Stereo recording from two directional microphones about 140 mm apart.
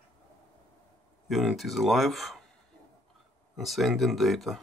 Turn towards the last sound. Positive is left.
turn(degrees=0)  # may be behind; listen again after turning